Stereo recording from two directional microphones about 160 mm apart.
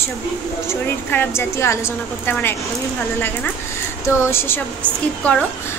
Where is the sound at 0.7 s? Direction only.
10° left (ahead or behind).